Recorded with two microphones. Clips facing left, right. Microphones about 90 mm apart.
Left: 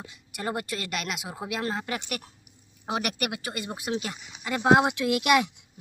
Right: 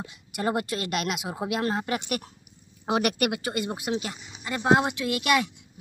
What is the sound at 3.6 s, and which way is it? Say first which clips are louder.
Speech: right 2 dB; 10° right (ahead or behind).